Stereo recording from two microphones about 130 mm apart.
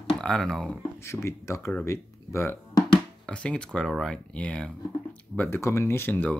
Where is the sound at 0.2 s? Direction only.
5° left (ahead or behind).